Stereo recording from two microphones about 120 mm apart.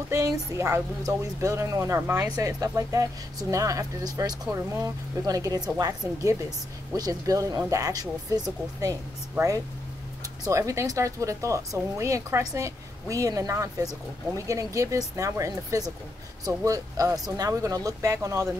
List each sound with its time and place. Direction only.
0.1 s speech: 25° right (ahead or behind)
10.2 s speech: 25° right (ahead or behind)